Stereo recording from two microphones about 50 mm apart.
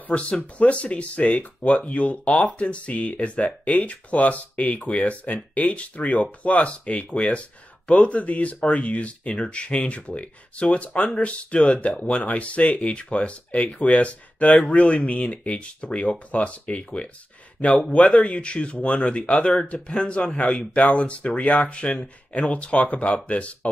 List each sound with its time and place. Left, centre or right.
0.1 s speech: left